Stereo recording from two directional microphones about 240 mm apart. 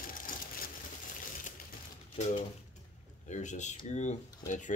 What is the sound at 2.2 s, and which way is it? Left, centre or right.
Speech, left.